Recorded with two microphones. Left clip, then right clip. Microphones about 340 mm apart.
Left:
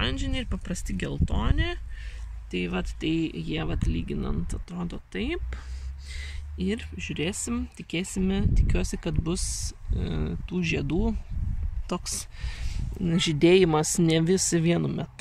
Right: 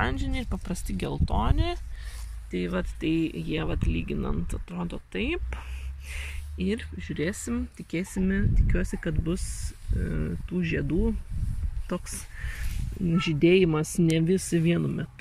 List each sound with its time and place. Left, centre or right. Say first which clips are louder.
0.0 s speech: even; centre
13.0 s speech: left 2 dB; left
13.4 s speech: left 2 dB; centre